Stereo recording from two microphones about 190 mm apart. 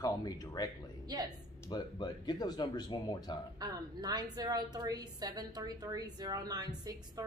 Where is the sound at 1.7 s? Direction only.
20° left (ahead or behind).